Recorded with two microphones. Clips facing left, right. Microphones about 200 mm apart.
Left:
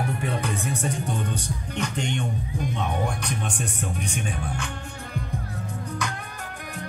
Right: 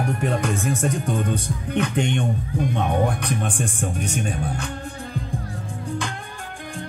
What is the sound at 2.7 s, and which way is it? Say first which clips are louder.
Music: right 6 dB; 55° right (ahead or behind).